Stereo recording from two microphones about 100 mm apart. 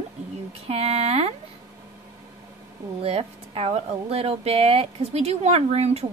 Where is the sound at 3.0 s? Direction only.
80° right.